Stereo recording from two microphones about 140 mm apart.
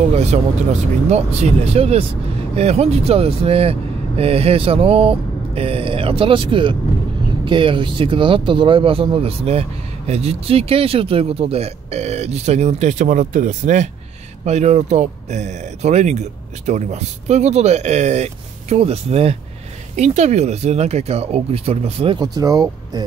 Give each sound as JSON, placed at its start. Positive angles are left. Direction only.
{"t": 0.1, "sound": "speech", "side_deg": -50}
{"t": 22.2, "sound": "speech", "side_deg": -25}